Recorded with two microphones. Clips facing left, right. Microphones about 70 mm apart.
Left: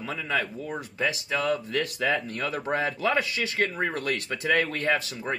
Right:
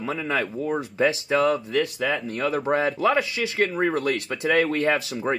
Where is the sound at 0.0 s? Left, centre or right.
Right.